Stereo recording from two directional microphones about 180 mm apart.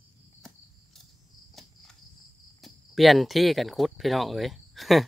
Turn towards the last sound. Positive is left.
turn(degrees=0)  # may be behind; listen again after turning